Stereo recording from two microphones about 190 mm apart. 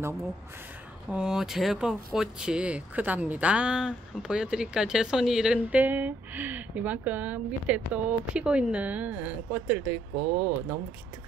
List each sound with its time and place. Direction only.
1.1 s speech: 5° right (ahead or behind)